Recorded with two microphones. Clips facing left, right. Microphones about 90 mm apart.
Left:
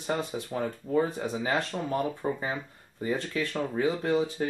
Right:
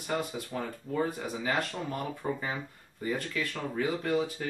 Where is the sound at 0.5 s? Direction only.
20° left (ahead or behind).